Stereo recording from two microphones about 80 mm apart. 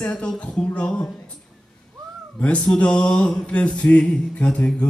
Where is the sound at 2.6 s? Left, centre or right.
Centre.